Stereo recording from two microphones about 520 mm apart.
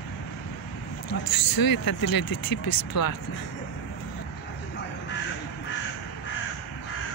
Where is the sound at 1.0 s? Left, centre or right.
Left.